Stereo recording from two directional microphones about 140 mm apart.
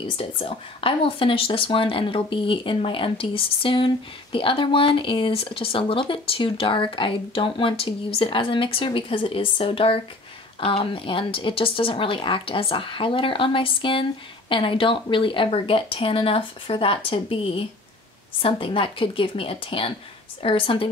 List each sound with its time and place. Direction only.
0.0 s speech: 40° left (ahead or behind)